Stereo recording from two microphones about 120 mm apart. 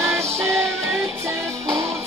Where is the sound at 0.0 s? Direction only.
25° right (ahead or behind).